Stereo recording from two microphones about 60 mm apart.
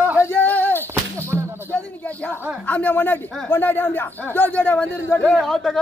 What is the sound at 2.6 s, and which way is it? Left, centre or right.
Speech, left.